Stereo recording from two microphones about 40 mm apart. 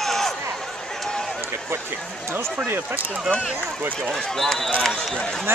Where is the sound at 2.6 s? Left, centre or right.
Right.